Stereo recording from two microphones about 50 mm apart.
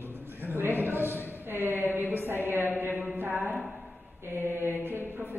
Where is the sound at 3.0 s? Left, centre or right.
Right.